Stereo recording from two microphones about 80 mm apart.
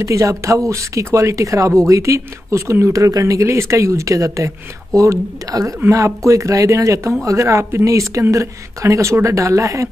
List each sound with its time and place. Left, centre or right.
0.0 s speech: right